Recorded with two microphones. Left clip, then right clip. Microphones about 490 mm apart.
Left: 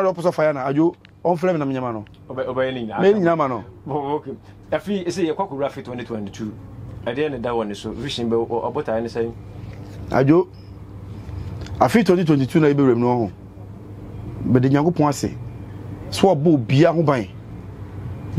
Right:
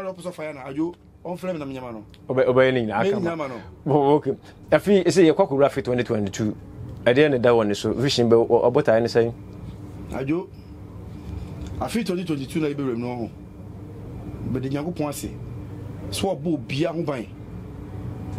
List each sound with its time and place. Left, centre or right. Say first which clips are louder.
0.0 s speech: left 13 dB; left
2.3 s speech: right 5 dB; right
3.0 s speech: left 7 dB; left
3.8 s speech: right 7 dB; right
10.1 s speech: left 11 dB; left
11.6 s speech: left 11 dB; left
14.5 s speech: left 11 dB; left